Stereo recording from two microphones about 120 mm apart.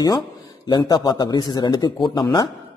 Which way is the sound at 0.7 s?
35° left (ahead or behind).